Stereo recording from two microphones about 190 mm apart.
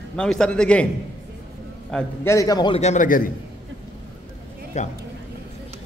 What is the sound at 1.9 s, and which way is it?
Speech, 15° left (ahead or behind).